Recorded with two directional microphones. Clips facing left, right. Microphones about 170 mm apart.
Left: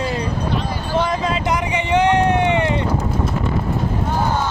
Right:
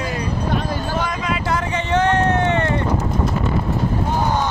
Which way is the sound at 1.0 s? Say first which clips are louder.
Left 3 dB; 25° left (ahead or behind).